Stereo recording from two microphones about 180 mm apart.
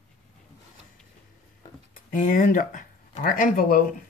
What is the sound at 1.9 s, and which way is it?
Speech, 45° left (ahead or behind).